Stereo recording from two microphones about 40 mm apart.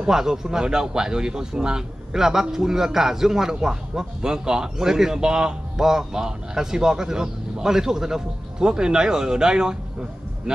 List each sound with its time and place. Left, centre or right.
0.0 s a man's voice: centre